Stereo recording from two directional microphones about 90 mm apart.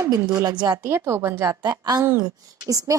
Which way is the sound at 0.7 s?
30° right (ahead or behind).